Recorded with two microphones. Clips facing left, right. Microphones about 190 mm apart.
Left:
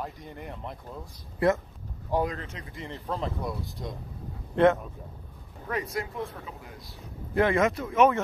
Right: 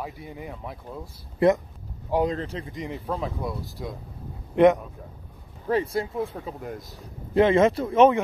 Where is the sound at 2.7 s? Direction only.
15° right (ahead or behind).